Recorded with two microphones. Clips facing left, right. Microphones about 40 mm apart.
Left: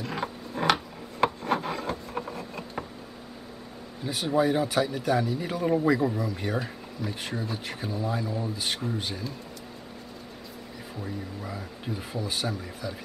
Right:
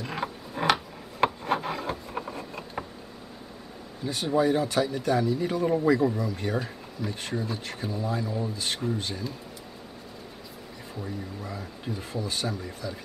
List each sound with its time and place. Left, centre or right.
0.0 s mechanisms: centre
1.2 s rub: centre
4.0 s speech: centre
11.0 s speech: centre